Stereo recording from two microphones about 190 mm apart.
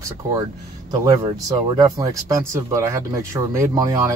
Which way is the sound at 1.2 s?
25° right (ahead or behind).